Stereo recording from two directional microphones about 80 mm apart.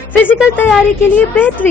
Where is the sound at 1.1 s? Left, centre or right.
Left.